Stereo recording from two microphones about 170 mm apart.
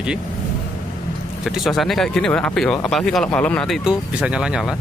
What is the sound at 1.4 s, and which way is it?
Speech, centre (ahead or behind).